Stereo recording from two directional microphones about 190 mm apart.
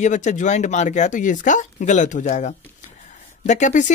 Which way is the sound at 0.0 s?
40° left (ahead or behind).